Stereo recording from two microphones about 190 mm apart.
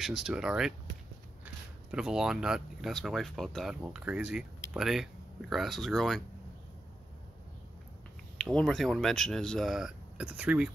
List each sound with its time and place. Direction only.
0.0 s speech: 5° right (ahead or behind)
8.4 s speech: 5° left (ahead or behind)